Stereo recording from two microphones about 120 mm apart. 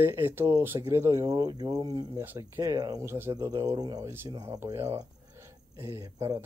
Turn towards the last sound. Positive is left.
turn(degrees=-30)  # may be behind; listen again after turning